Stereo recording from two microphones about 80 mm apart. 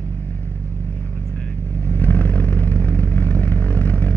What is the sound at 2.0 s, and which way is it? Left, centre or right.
Vehicle, left.